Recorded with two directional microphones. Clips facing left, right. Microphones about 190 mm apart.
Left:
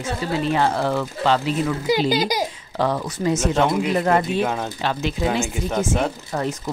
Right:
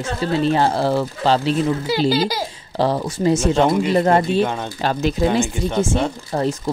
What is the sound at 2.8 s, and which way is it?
Speech, 30° right (ahead or behind).